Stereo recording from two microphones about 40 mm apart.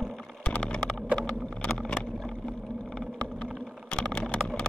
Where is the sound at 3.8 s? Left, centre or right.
Left.